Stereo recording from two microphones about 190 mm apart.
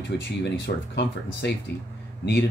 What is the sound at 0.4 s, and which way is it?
Speech, 65° left (ahead or behind).